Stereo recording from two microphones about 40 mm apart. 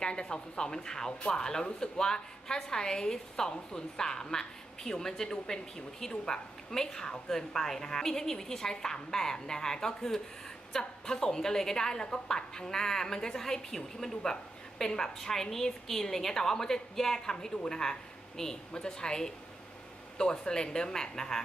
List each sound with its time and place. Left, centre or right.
0.0 s a woman's voice: left